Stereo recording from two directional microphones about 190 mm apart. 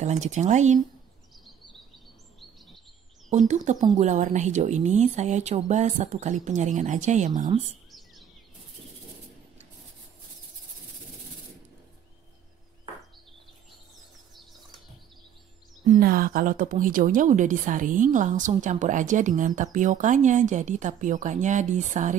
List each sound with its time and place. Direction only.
0.0 s a woman's voice: 40° right (ahead or behind)
3.3 s a woman's voice: 40° right (ahead or behind)
15.9 s a woman's voice: 50° right (ahead or behind)